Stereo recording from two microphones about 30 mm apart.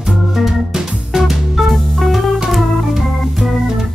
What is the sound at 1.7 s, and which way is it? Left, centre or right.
Music, centre.